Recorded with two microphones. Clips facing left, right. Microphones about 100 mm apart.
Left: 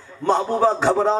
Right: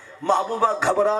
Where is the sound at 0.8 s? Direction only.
30° left (ahead or behind).